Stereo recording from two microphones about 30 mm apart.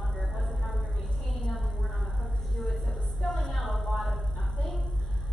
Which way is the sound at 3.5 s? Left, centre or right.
Centre.